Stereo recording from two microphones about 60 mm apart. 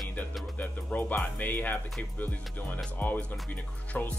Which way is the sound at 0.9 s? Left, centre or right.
Left.